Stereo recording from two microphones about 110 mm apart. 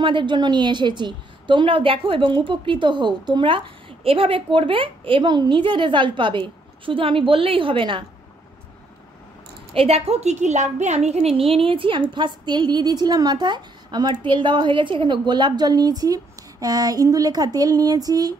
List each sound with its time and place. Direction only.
0.0 s a woman's voice: 50° right (ahead or behind)
9.8 s a woman's voice: 65° right (ahead or behind); by 18.3 s 35° right (ahead or behind)